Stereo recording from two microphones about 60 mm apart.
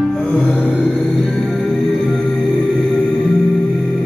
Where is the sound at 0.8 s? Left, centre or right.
Centre.